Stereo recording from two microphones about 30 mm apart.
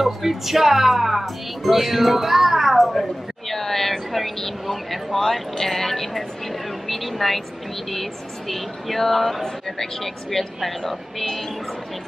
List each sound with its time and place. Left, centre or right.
0.0 s speech: centre
2.9 s a woman's voice: centre